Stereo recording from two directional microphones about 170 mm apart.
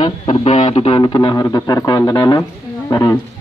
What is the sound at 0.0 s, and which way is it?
A man's voice, 30° left (ahead or behind).